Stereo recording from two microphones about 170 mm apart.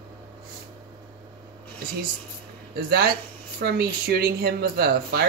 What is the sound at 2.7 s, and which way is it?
Speech, 70° right (ahead or behind).